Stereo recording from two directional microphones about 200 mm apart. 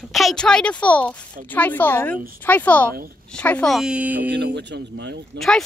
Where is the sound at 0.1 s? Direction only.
Centre (ahead or behind).